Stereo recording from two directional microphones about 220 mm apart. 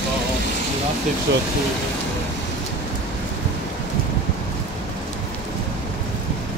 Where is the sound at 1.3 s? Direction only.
55° right (ahead or behind).